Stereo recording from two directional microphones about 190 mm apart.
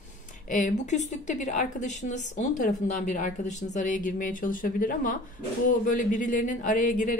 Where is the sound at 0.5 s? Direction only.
40° left (ahead or behind).